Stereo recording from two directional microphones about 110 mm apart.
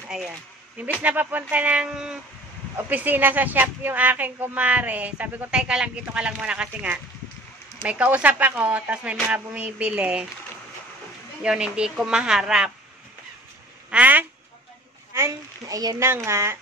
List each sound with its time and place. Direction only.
0.1 s speech: 5° right (ahead or behind)
11.4 s speech: 10° right (ahead or behind)
13.8 s speech: 15° right (ahead or behind)
15.1 s speech: 30° right (ahead or behind)